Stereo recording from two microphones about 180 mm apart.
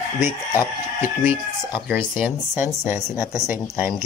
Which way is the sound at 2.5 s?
10° right (ahead or behind).